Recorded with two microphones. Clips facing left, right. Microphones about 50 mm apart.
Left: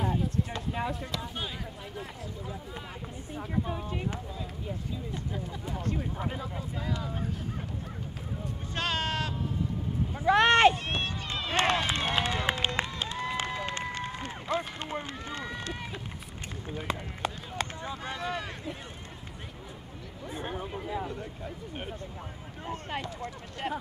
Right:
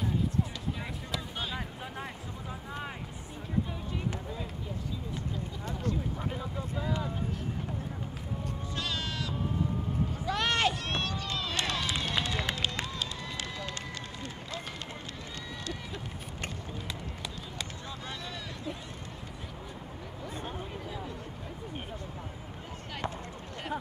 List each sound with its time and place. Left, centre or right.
0.8 s speech: centre
3.6 s speech: left
6.1 s speech: centre
8.7 s a sound: left
10.2 s speech: left
12.0 s run: left
17.8 s a sound: left
22.7 s speech: left